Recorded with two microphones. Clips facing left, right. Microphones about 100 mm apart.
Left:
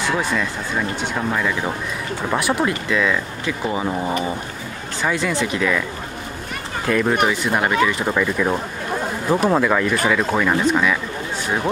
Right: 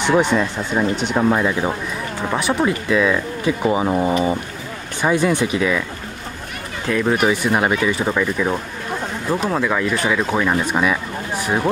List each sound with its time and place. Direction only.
0.0 s speech: 20° right (ahead or behind)
2.3 s speech: centre (ahead or behind)
2.9 s speech: 15° right (ahead or behind)
6.9 s speech: 10° right (ahead or behind)
9.3 s speech: 15° left (ahead or behind)
9.6 s speech: centre (ahead or behind)